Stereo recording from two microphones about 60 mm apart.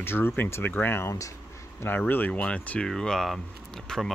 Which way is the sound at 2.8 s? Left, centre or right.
Centre.